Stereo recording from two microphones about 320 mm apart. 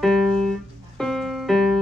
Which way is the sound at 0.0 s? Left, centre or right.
Centre.